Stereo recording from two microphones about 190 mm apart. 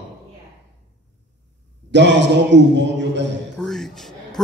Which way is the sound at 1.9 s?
70° right (ahead or behind).